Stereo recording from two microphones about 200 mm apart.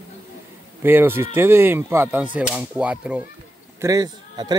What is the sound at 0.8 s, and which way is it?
Speech, 10° right (ahead or behind).